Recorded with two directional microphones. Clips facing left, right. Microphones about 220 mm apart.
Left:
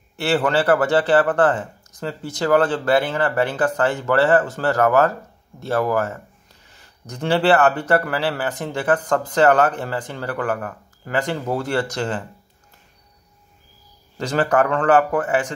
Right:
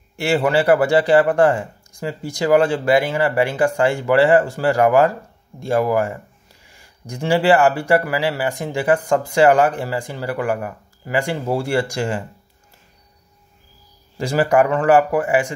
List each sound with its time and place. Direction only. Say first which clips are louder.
0.1 s speech: right 2 dB; 10° right (ahead or behind)
14.1 s speech: right 3 dB; 10° right (ahead or behind)